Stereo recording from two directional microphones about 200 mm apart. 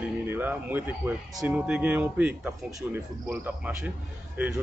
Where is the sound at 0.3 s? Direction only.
10° right (ahead or behind).